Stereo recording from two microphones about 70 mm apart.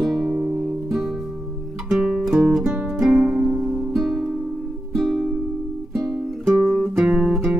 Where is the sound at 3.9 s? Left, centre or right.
Centre.